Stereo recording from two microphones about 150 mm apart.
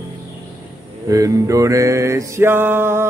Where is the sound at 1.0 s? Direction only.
20° right (ahead or behind).